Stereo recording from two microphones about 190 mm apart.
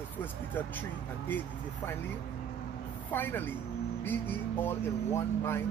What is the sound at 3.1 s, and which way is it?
Speech, 10° left (ahead or behind).